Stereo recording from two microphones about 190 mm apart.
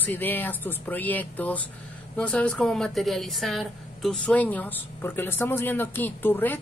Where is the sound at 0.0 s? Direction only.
10° left (ahead or behind).